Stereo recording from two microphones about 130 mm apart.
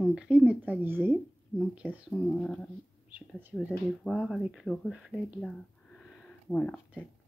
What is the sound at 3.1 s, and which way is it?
Speech, 10° right (ahead or behind).